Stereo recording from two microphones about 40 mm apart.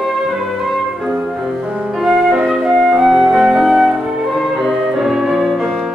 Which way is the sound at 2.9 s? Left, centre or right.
Centre.